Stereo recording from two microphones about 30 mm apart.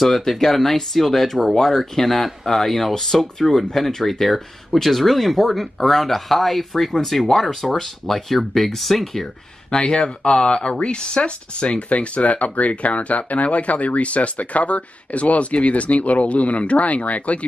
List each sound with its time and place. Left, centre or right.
0.0 s speech: centre
7.3 s speech: centre
9.7 s speech: left
11.9 s speech: left